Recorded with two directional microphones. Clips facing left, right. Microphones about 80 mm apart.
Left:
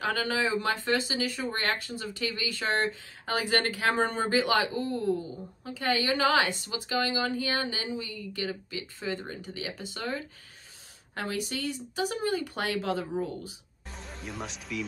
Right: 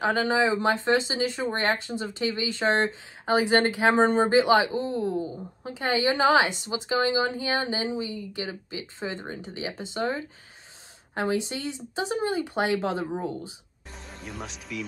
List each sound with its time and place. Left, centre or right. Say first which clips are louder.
0.0 s speech: right 5 dB; right
13.9 s speech: even; centre